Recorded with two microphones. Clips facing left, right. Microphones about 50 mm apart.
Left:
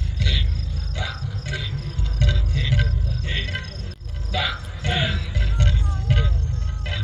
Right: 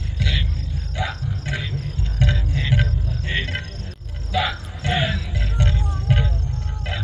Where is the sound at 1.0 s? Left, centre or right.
Centre.